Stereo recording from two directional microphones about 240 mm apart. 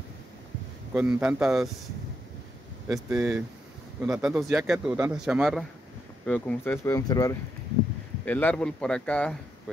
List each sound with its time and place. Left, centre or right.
0.9 s a man's voice: centre
2.9 s a man's voice: centre